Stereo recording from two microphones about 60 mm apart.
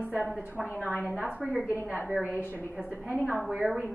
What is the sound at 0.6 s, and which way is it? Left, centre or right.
Speech, centre.